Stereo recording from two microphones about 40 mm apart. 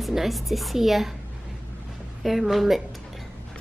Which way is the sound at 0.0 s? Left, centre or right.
Centre.